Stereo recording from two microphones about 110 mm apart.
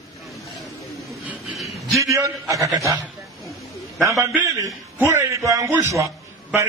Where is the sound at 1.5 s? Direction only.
Centre (ahead or behind).